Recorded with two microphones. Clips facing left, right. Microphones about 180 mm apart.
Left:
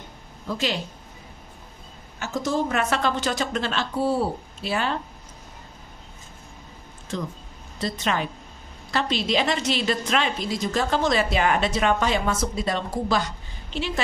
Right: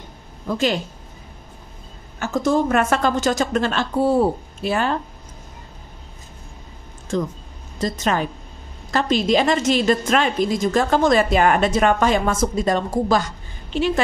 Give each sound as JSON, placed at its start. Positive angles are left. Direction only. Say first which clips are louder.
{"t": 0.5, "sound": "a woman's voice", "louder": "right 6 dB", "side_deg": -50}
{"t": 2.1, "sound": "a woman's voice", "louder": "right 6 dB", "side_deg": -50}
{"t": 7.1, "sound": "a woman's voice", "louder": "right 7 dB", "side_deg": -45}